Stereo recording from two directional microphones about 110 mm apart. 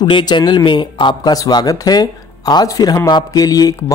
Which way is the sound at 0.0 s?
45° left (ahead or behind).